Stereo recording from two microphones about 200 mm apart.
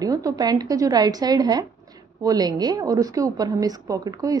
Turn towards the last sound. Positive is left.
turn(degrees=-20)  # may be behind; listen again after turning